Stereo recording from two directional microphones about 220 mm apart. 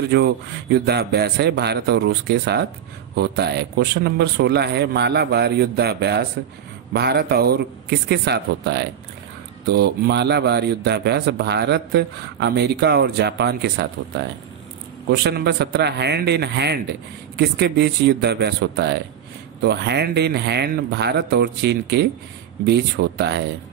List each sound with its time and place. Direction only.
0.1 s a man's voice: 45° right (ahead or behind)